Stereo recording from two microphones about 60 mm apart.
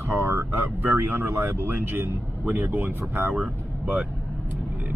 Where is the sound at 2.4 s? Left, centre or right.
Right.